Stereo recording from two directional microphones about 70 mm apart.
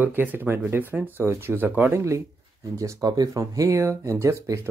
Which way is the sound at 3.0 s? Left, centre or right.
Right.